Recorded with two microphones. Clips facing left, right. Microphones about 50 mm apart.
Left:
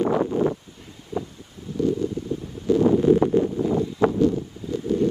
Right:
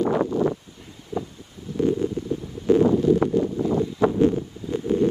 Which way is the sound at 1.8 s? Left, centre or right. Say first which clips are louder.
Right 1 dB; right.